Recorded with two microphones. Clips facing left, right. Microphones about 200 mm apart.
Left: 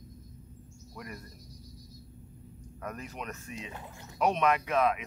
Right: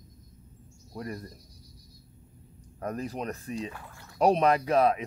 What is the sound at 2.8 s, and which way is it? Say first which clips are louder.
Speech: right 7 dB; 35° right (ahead or behind).